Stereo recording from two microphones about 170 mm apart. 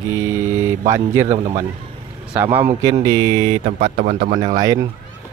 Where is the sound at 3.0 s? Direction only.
25° right (ahead or behind).